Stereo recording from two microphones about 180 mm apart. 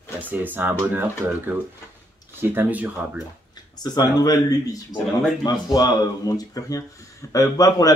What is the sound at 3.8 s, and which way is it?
Speech, 20° left (ahead or behind).